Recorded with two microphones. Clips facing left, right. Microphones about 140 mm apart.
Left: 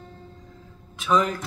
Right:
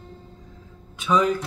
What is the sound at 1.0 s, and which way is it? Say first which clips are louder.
Speech: right 2 dB; centre (ahead or behind).